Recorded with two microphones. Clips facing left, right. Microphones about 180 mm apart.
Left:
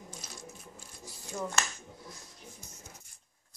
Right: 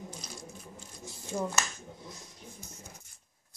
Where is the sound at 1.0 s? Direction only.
25° right (ahead or behind).